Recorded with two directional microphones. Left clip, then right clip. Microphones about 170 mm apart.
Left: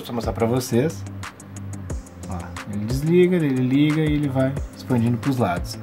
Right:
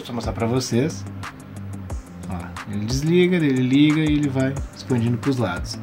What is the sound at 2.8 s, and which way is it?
Speech, 20° left (ahead or behind).